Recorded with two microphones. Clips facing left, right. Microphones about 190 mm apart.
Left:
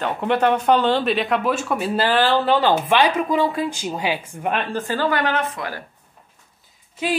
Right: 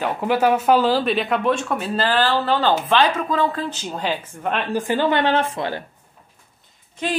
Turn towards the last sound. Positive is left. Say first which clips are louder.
# left 1 dB
turn(degrees=5)  # may be behind; listen again after turning